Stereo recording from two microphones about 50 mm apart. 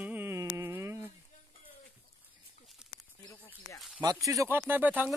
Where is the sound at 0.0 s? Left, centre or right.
Right.